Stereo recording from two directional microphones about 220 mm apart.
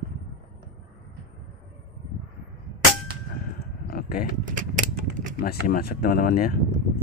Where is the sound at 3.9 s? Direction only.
40° left (ahead or behind).